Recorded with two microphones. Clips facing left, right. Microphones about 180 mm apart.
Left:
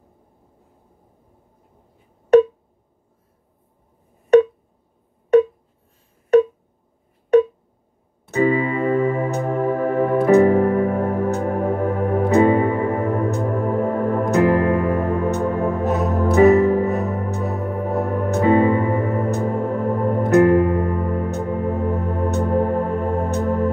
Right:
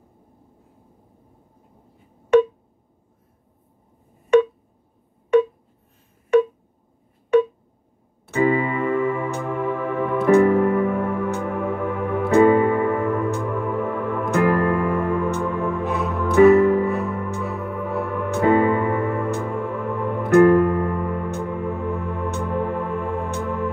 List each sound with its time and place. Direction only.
8.3 s music: 40° left (ahead or behind)